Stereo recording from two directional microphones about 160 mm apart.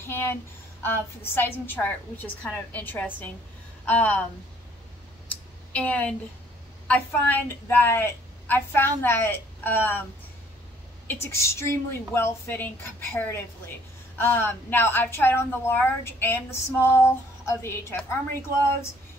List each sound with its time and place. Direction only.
0.0 s a woman's voice: 15° left (ahead or behind)
5.3 s a sound: 10° left (ahead or behind)
6.9 s a woman's voice: 10° left (ahead or behind)
11.1 s a woman's voice: 15° left (ahead or behind)